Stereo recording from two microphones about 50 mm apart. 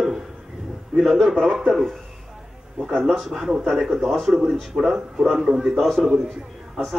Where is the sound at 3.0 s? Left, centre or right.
Centre.